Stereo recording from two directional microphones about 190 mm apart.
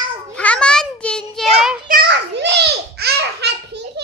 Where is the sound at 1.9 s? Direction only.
55° right (ahead or behind).